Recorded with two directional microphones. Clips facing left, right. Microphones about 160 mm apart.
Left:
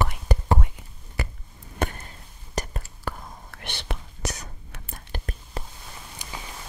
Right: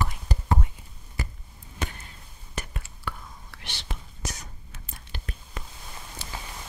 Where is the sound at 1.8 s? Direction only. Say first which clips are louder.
Left 7 dB; 55° left (ahead or behind).